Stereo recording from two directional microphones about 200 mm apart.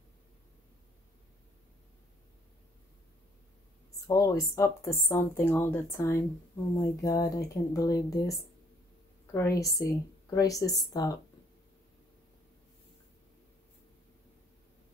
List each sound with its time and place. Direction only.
4.1 s speech: 15° left (ahead or behind)